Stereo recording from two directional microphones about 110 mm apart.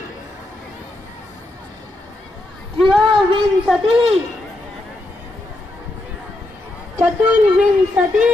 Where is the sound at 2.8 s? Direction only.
Centre (ahead or behind).